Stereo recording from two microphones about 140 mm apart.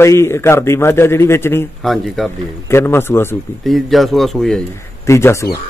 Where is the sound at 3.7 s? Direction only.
Centre (ahead or behind).